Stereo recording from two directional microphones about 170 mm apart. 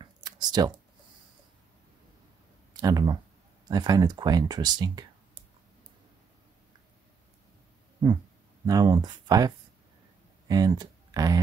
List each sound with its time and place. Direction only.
0.0 s a sound: 25° right (ahead or behind)
2.7 s speech: 20° right (ahead or behind)
8.6 s speech: 25° right (ahead or behind)
10.5 s speech: 20° right (ahead or behind)